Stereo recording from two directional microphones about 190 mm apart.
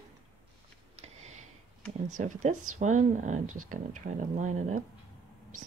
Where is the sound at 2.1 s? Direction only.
40° right (ahead or behind).